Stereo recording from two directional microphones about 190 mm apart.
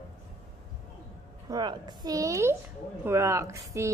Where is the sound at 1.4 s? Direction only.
20° right (ahead or behind).